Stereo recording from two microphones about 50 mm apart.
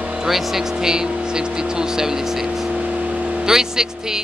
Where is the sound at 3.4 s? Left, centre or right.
Centre.